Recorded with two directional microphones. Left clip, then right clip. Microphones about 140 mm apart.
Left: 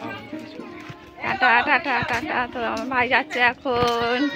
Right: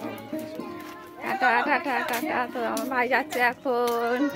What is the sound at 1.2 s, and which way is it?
A woman's voice, 5° left (ahead or behind).